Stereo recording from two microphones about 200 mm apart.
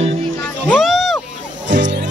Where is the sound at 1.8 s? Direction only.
65° right (ahead or behind).